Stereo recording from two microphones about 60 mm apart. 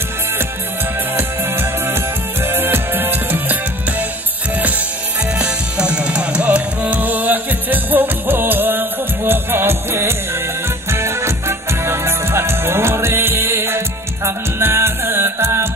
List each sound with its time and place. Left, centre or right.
1.1 s music: right
5.4 s music: centre; by 15.7 s right